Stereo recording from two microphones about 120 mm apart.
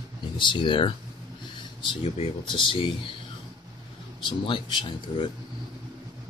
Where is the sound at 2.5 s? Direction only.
45° left (ahead or behind).